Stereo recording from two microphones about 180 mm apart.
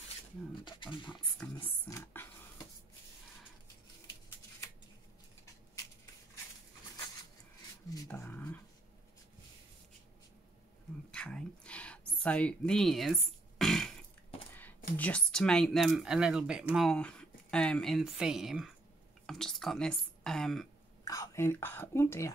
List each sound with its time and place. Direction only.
0.7 s speech: 25° left (ahead or behind)
1.6 s speech: 15° left (ahead or behind)
8.1 s a sound: 10° left (ahead or behind)
11.1 s whispering: 5° left (ahead or behind)
12.2 s speech: 5° left (ahead or behind)
15.0 s speech: 5° left (ahead or behind)
21.0 s speech: 20° left (ahead or behind)